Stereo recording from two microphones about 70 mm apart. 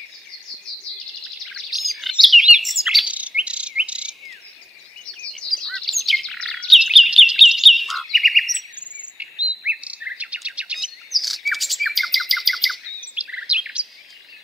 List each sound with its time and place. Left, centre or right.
1.4 s chirp: centre
3.1 s insect: centre
5.2 s a sound: centre
5.6 s chirp: centre
6.8 s bird: centre
7.3 s chirp: centre
8.7 s bird vocalization: centre
11.1 s bird: centre
13.0 s bird vocalization: centre